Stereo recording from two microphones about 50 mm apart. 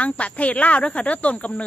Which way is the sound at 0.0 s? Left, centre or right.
Left.